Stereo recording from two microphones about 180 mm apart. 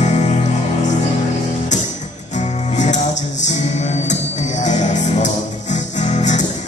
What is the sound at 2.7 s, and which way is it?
Music, 40° left (ahead or behind).